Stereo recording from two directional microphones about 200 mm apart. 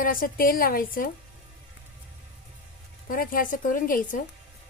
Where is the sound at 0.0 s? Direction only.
45° left (ahead or behind).